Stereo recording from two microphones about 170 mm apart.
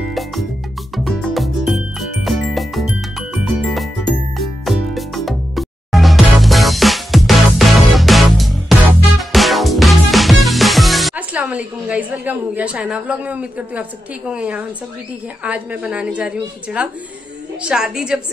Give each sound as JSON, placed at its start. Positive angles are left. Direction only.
{"t": 0.1, "sound": "music", "side_deg": 0}
{"t": 15.4, "sound": "a woman's voice", "side_deg": -10}